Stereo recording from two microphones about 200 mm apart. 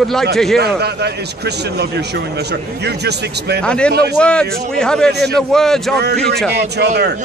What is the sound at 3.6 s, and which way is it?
A man's voice, 5° left (ahead or behind).